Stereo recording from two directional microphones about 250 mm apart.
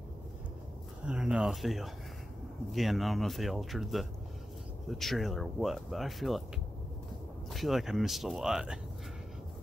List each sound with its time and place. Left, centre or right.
1.0 s speech: centre
7.5 s speech: centre